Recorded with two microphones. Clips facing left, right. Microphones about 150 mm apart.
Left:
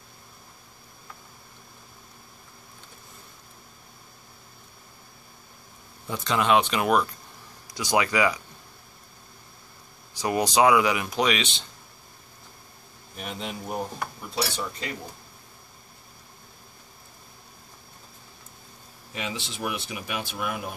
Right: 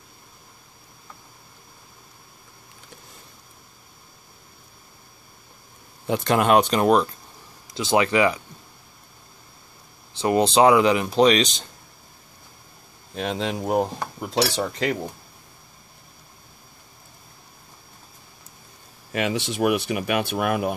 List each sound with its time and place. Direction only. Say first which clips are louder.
6.0 s speech: right 5 dB; 60° right (ahead or behind); by 8.4 s 25° right (ahead or behind)
10.1 s speech: right 5 dB; 25° right (ahead or behind)
13.1 s cutlery: right 9 dB; 90° right
19.1 s speech: right 10 dB; 65° right (ahead or behind)